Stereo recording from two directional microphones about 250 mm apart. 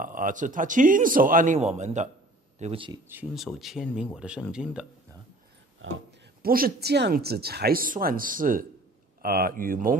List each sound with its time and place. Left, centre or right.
0.0 s speech: right
3.1 s speech: centre
5.8 s speech: right
6.4 s speech: right